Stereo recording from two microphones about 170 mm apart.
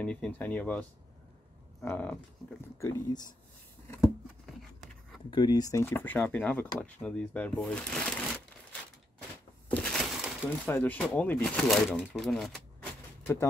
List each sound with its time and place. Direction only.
0.0 s speech: 5° left (ahead or behind)
2.8 s speech: 20° left (ahead or behind)
3.8 s a sound: 15° left (ahead or behind)
5.3 s speech: 25° left (ahead or behind); by 8.1 s 5° left (ahead or behind)
9.7 s a sound: 5° left (ahead or behind)
10.6 s speech: 10° left (ahead or behind)